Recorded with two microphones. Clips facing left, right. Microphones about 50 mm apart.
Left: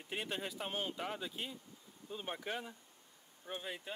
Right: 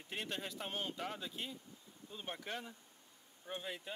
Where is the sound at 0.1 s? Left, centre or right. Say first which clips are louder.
Left 2 dB; centre.